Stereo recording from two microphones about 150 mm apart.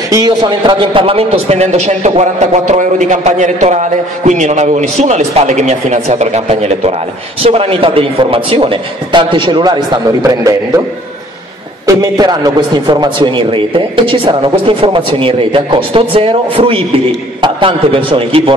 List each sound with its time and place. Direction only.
0.1 s a man's voice: 30° right (ahead or behind)
11.8 s a man's voice: 25° right (ahead or behind)